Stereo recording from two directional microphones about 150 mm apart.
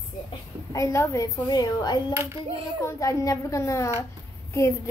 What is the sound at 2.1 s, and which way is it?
Speech, 15° right (ahead or behind).